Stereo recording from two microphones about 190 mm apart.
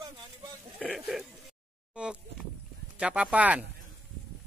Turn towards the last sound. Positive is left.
turn(degrees=-5)  # may be behind; listen again after turning